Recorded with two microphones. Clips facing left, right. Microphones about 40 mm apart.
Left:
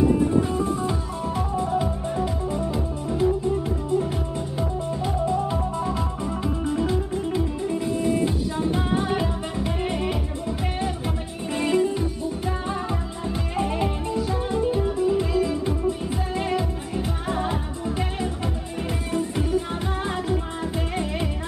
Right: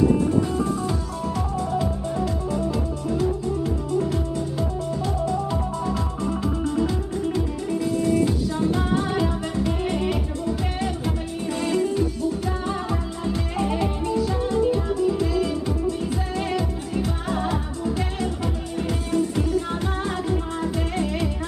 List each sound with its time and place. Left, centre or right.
0.7 s music: left
5.2 s music: left